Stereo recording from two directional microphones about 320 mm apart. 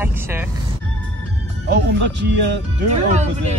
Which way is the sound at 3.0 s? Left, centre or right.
Right.